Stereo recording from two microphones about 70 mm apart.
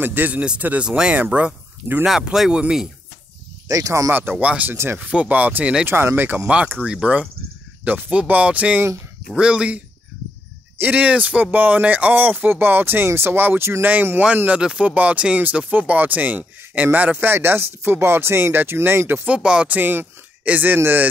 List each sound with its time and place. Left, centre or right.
0.0 s speech: right
2.3 s speech: centre
3.6 s speech: right
4.1 s speech: right
5.9 s speech: right; by 7.2 s centre
7.8 s speech: right
10.8 s speech: right
19.2 s speech: centre
19.8 s speech: right